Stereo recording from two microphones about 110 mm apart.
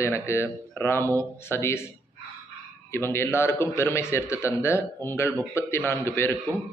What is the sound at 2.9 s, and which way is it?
Speech, 20° left (ahead or behind).